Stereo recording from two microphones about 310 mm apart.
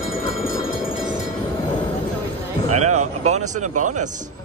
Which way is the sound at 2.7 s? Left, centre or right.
Right.